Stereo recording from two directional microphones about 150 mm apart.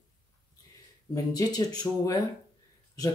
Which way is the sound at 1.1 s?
25° left (ahead or behind).